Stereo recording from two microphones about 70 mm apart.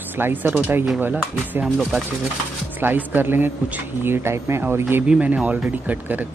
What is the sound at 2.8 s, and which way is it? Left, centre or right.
Speech, right.